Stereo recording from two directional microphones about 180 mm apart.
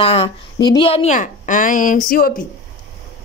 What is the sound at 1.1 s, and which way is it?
Speech, 45° left (ahead or behind).